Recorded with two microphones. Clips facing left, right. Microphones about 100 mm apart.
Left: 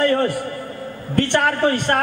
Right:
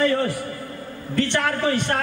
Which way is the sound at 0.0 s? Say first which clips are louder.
Left 3 dB; 55° left (ahead or behind).